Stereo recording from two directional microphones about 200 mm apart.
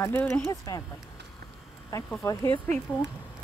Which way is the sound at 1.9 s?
15° left (ahead or behind).